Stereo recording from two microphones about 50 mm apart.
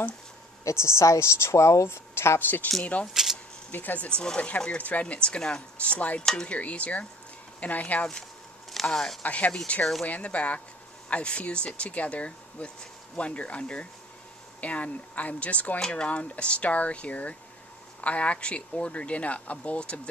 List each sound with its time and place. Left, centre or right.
0.7 s a woman's voice: left
1.9 s speech: left
2.8 s speech: left
3.1 s speech: centre
3.7 s speech: left
4.2 s speech: centre
4.6 s speech: left
5.8 s speech: left
8.9 s speech: centre
9.2 s speech: left